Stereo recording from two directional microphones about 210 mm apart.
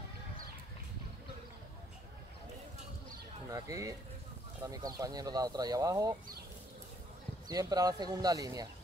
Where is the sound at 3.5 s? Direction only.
15° right (ahead or behind).